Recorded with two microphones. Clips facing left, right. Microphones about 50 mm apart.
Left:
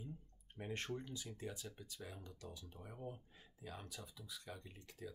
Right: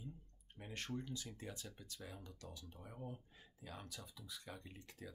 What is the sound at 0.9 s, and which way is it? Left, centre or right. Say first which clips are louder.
Speech: right 1 dB; centre.